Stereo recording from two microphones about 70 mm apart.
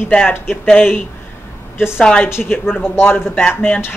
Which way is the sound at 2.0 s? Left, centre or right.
Centre.